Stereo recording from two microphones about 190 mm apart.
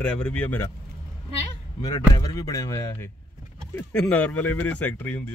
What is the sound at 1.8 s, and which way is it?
Speech, 20° left (ahead or behind).